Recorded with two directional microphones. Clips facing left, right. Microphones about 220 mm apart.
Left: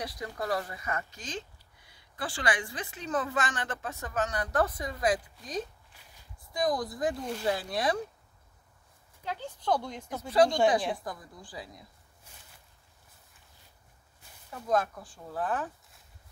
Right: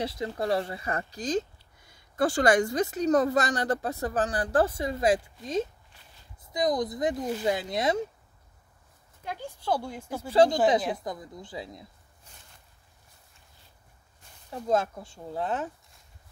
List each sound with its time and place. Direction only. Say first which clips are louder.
0.0 s speech: right 6 dB; 25° right (ahead or behind)
9.2 s speech: even; 10° right (ahead or behind)
11.1 s speech: right 4 dB; 20° right (ahead or behind)
14.5 s speech: right 2 dB; 25° right (ahead or behind)